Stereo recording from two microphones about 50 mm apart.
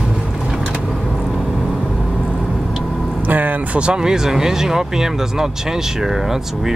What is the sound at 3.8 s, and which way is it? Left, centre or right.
Speech, centre.